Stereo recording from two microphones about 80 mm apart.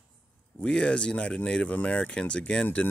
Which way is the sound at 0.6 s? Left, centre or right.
Centre.